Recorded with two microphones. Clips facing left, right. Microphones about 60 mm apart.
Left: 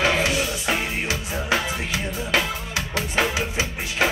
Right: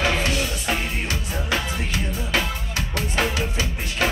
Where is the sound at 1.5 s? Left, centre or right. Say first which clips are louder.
Left 2 dB; left.